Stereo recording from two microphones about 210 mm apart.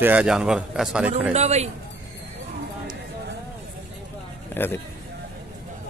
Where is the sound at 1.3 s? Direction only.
30° right (ahead or behind).